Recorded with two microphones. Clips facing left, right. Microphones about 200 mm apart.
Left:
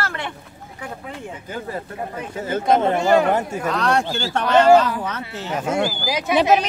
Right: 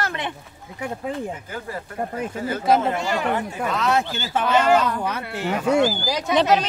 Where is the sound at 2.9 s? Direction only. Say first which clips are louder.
Left 7 dB; 45° left (ahead or behind).